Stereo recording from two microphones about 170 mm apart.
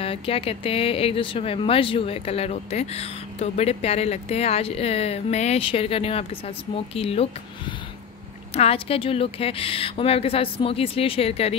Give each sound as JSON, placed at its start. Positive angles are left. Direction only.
{"t": 0.0, "sound": "speech", "side_deg": 35}
{"t": 8.5, "sound": "speech", "side_deg": 35}